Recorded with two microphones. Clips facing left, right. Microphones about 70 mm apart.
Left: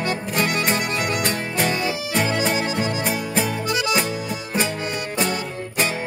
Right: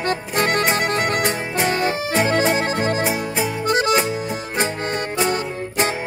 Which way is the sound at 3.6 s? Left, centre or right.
Right.